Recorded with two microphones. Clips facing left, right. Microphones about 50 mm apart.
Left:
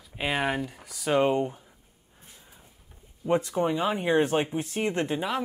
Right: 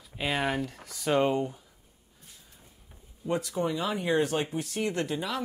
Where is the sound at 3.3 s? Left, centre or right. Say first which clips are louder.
Left 4 dB; left.